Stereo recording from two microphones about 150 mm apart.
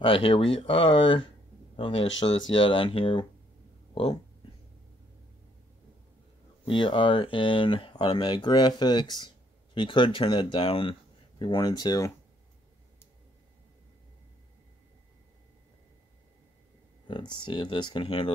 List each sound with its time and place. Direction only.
0.0 s speech: 35° left (ahead or behind)
6.6 s speech: 35° left (ahead or behind)
17.1 s speech: 30° left (ahead or behind)